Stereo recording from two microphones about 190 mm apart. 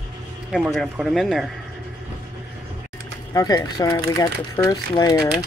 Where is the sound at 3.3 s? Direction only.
20° left (ahead or behind).